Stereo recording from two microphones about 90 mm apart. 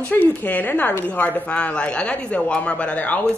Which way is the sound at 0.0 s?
15° left (ahead or behind).